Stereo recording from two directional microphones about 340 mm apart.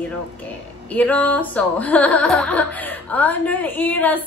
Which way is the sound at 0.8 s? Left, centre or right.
Centre.